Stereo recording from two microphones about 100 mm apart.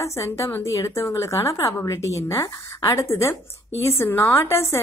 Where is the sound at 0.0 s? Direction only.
30° left (ahead or behind).